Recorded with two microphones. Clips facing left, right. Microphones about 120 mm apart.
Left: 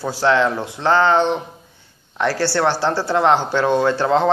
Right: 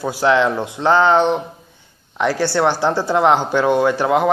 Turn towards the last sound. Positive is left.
turn(degrees=-15)  # may be behind; listen again after turning